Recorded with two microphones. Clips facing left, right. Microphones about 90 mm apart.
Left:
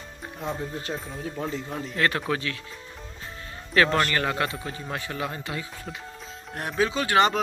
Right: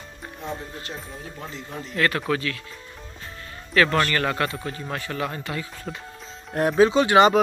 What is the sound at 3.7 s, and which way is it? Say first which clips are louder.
Speech: right 1 dB; 25° left (ahead or behind).